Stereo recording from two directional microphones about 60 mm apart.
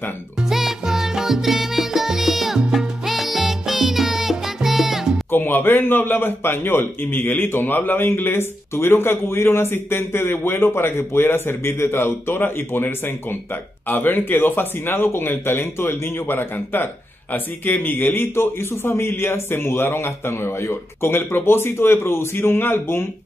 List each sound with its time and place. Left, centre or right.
0.4 s music: centre
5.3 s speech: left